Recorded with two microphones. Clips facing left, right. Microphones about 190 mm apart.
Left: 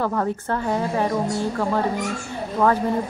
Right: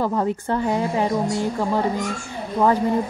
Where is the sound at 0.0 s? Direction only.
15° right (ahead or behind).